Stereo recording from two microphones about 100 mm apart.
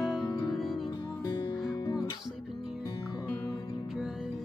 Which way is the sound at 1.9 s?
40° left (ahead or behind).